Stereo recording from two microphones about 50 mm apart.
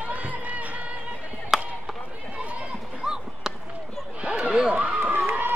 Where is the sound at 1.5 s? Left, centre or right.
Centre.